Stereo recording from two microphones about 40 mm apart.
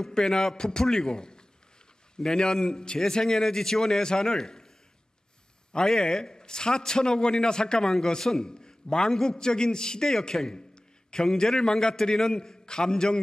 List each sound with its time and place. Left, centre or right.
0.0 s a man's voice: centre
5.7 s a man's voice: centre